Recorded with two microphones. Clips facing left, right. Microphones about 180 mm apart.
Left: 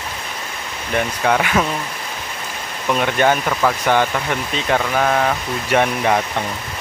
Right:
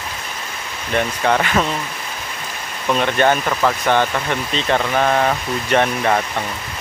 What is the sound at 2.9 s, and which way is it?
Speech, 10° left (ahead or behind).